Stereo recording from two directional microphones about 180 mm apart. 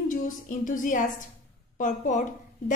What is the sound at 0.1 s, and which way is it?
A woman's voice, 50° left (ahead or behind).